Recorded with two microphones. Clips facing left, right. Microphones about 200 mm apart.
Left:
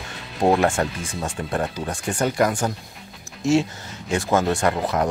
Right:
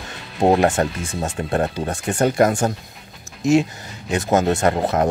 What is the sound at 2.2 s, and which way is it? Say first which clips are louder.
Speech: right 4 dB; 40° right (ahead or behind).